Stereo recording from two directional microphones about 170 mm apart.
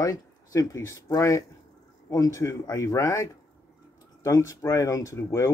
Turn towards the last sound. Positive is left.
turn(degrees=15)  # may be behind; listen again after turning